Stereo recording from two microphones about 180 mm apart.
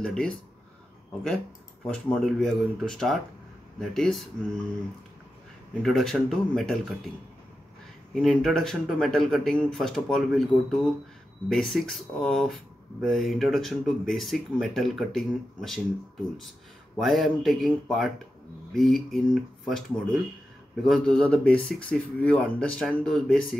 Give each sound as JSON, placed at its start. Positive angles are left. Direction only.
{"t": 0.0, "sound": "speech", "side_deg": 5}
{"t": 1.9, "sound": "speech", "side_deg": 5}
{"t": 5.8, "sound": "speech", "side_deg": 0}
{"t": 8.1, "sound": "speech", "side_deg": 0}
{"t": 16.9, "sound": "speech", "side_deg": 0}